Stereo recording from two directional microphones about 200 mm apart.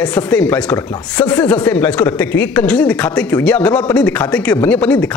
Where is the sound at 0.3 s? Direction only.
10° left (ahead or behind).